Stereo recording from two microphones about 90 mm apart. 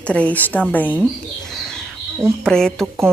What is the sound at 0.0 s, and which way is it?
Speech, 15° left (ahead or behind).